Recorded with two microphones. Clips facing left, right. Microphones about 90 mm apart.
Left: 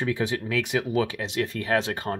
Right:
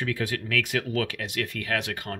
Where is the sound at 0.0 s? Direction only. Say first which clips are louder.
Left 3 dB; 25° left (ahead or behind).